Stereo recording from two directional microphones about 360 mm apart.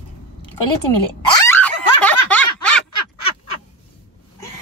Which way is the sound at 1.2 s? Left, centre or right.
Centre.